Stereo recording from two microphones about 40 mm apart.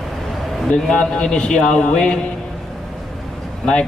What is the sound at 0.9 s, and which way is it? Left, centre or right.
A man's voice, left.